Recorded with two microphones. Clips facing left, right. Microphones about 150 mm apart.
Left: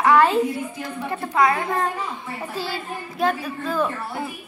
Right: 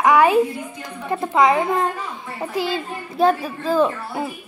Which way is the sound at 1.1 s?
25° right (ahead or behind).